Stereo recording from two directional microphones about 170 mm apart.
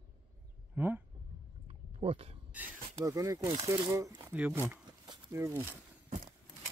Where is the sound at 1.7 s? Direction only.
35° right (ahead or behind).